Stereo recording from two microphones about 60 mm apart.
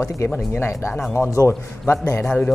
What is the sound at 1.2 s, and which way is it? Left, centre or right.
Speech, left.